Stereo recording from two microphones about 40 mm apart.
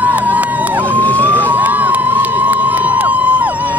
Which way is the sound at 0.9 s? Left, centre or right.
Left.